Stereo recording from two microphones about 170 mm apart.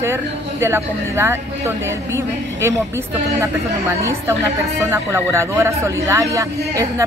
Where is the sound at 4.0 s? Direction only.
15° right (ahead or behind).